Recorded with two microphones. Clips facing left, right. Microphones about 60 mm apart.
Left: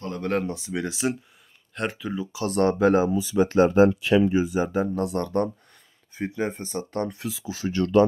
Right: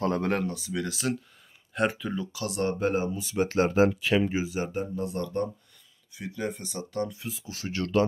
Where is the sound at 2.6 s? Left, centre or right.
Left.